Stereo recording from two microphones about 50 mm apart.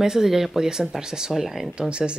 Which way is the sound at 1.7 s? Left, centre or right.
Centre.